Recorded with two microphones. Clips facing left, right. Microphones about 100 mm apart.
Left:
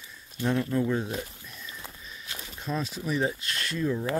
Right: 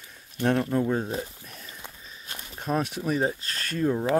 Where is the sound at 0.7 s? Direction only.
35° right (ahead or behind).